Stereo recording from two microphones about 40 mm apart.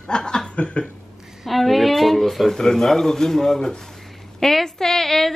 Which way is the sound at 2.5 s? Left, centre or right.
Centre.